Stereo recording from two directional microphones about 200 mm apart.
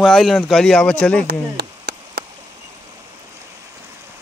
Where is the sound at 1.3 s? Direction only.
55° right (ahead or behind).